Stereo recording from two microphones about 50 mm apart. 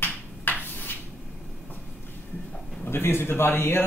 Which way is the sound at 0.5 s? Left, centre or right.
Left.